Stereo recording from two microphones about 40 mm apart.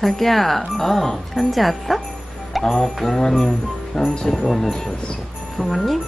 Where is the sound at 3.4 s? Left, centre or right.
Left.